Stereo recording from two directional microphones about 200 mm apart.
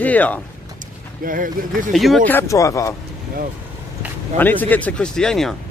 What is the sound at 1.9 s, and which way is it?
A man's voice, centre (ahead or behind).